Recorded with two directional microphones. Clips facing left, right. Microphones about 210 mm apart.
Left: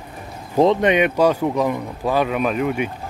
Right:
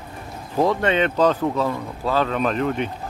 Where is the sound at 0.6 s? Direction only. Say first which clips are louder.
Left 4 dB; 20° left (ahead or behind).